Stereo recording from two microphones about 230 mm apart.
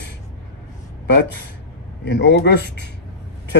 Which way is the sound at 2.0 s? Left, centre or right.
Left.